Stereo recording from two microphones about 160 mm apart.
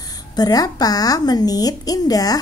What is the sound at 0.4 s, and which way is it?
A woman's voice, 25° left (ahead or behind).